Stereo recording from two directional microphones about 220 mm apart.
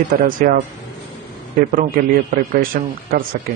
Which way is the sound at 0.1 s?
40° right (ahead or behind).